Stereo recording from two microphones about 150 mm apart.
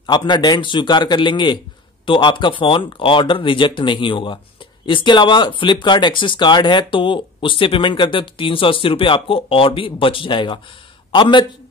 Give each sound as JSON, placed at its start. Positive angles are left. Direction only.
{"t": 0.0, "sound": "a man's voice", "side_deg": 30}